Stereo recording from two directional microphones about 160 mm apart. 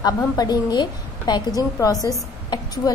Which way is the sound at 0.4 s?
25° left (ahead or behind).